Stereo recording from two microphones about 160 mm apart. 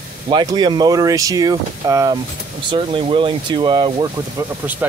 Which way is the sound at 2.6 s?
30° right (ahead or behind).